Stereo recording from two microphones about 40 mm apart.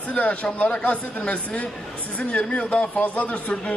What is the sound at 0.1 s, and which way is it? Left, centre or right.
A man's voice, left.